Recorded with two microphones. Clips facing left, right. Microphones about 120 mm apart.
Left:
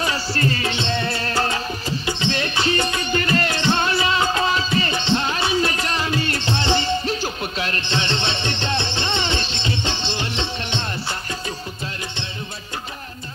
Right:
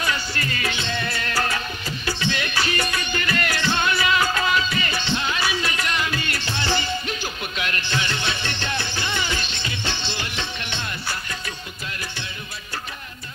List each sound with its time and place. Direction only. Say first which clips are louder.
0.0 s music: left 4 dB; 35° left (ahead or behind)